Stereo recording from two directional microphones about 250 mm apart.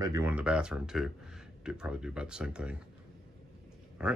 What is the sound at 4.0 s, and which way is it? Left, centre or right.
Speech, centre.